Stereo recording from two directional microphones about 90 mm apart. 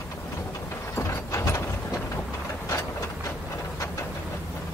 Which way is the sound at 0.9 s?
35° left (ahead or behind).